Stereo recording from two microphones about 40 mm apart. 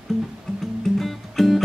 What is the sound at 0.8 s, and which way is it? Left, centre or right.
Music, centre.